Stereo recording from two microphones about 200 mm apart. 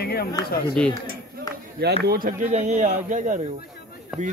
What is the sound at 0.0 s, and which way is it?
Speech, 50° left (ahead or behind).